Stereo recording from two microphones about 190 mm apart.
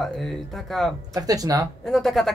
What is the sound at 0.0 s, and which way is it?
Speech, centre (ahead or behind).